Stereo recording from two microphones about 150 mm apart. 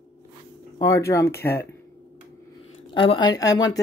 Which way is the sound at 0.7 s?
25° left (ahead or behind).